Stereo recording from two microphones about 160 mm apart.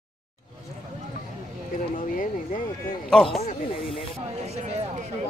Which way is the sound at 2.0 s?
55° left (ahead or behind).